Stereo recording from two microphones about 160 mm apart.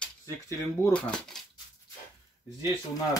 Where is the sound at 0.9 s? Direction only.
5° left (ahead or behind).